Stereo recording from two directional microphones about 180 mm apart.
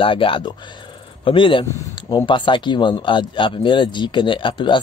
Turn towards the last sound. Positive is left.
turn(degrees=25)  # may be behind; listen again after turning